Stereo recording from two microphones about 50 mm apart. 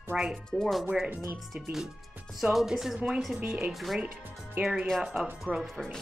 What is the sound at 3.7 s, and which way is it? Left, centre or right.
Speech, centre.